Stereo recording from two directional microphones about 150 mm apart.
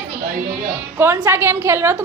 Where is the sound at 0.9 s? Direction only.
15° right (ahead or behind).